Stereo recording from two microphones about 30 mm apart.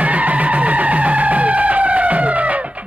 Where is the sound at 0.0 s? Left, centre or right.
Right.